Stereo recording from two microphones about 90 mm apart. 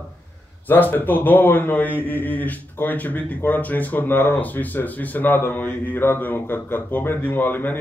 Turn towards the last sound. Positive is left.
turn(degrees=20)  # may be behind; listen again after turning